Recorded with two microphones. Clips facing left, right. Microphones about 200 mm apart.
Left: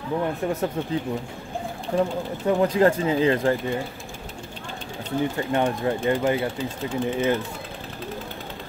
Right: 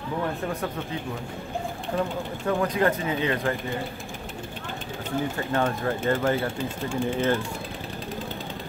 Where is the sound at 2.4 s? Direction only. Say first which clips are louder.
Left 5 dB; 25° left (ahead or behind).